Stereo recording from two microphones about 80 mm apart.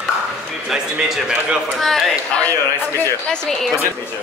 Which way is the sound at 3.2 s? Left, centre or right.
Centre.